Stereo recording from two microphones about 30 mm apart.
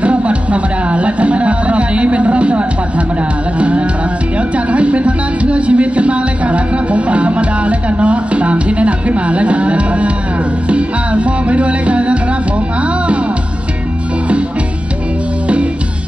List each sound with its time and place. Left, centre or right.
0.0 s music: right